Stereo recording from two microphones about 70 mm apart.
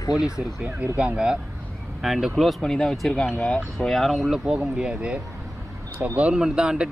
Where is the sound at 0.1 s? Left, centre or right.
Centre.